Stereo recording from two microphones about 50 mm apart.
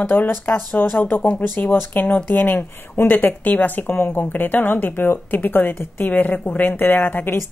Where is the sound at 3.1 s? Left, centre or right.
Left.